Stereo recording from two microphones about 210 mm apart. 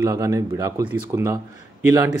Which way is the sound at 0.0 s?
15° right (ahead or behind).